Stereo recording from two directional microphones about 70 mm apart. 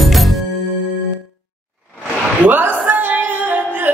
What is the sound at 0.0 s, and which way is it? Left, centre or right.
Music, centre.